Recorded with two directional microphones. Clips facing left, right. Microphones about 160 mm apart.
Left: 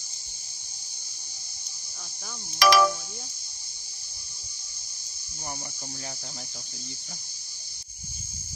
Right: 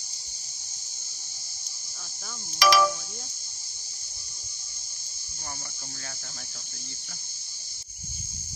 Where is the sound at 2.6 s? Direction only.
55° left (ahead or behind).